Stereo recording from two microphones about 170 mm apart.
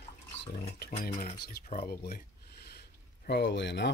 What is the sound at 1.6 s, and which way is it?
Speech, 60° left (ahead or behind).